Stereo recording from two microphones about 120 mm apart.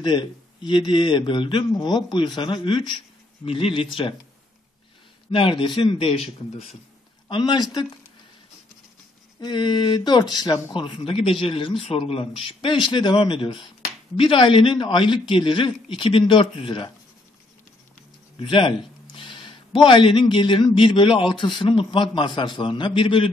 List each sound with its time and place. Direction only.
0.0 s speech: 40° left (ahead or behind)
5.3 s speech: 45° left (ahead or behind)
7.2 s speech: 40° left (ahead or behind)
9.4 s speech: 40° left (ahead or behind)
18.4 s speech: 45° left (ahead or behind)